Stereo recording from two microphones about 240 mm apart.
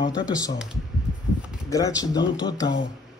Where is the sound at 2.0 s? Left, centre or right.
Centre.